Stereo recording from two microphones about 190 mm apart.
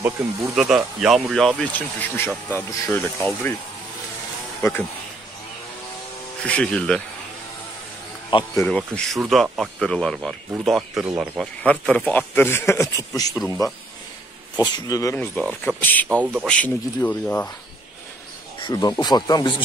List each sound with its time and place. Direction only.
0.0 s speech: 5° right (ahead or behind); by 3.5 s 10° left (ahead or behind)
4.6 s speech: 10° left (ahead or behind)
6.4 s speech: 5° left (ahead or behind)
8.5 s speech: 5° left (ahead or behind)
11.6 s speech: 5° left (ahead or behind)
15.3 s speech: 5° left (ahead or behind)
16.1 s speech: 10° right (ahead or behind)
16.4 s speech: 10° left (ahead or behind)
18.7 s speech: 20° left (ahead or behind)